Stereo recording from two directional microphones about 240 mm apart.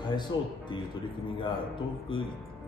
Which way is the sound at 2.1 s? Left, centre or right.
Left.